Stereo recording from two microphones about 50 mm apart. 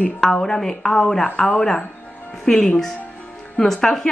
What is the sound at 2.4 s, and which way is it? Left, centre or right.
Speech, centre.